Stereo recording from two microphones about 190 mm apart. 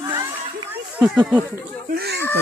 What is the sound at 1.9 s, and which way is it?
Speech, 60° right (ahead or behind).